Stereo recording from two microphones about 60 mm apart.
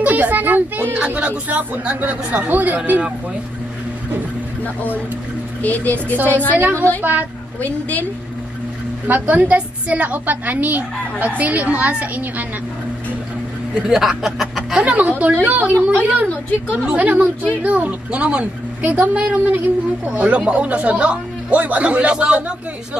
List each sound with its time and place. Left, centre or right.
0.0 s speech: right
0.9 s a woman's voice: centre
5.6 s a woman's voice: left
7.0 s a woman's voice: right
9.0 s a woman's voice: right
13.8 s speech: centre
14.8 s a woman's voice: right